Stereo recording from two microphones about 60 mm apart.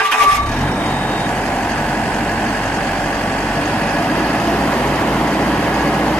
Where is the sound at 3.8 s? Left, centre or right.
Centre.